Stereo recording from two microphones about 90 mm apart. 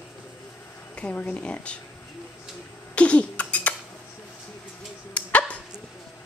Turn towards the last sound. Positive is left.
turn(degrees=15)  # may be behind; listen again after turning